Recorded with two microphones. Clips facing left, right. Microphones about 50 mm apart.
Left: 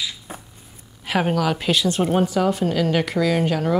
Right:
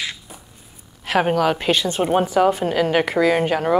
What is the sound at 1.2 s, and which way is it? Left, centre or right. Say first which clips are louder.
A woman's voice: right 2 dB; centre.